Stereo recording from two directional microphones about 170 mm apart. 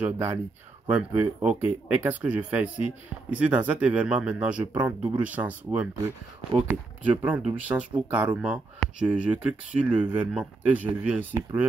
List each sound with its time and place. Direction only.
0.0 s speech: 15° right (ahead or behind)
9.8 s speech: 30° right (ahead or behind)
10.3 s speech: 10° right (ahead or behind)